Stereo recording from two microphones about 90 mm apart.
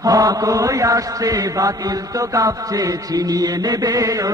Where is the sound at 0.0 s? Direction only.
40° right (ahead or behind).